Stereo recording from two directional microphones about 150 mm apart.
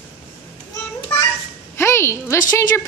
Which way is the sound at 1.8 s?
15° left (ahead or behind).